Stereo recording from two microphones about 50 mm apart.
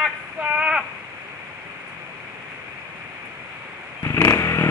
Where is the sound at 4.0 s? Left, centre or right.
Left.